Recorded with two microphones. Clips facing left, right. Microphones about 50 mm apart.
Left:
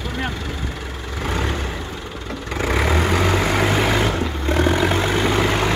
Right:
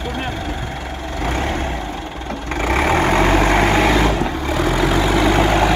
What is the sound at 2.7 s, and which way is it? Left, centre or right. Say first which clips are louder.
Vehicle: right 4 dB; right.